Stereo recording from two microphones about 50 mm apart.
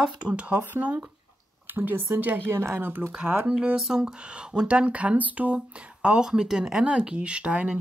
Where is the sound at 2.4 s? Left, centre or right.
Right.